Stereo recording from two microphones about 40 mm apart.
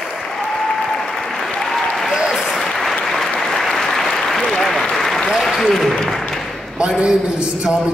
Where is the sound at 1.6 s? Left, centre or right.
Centre.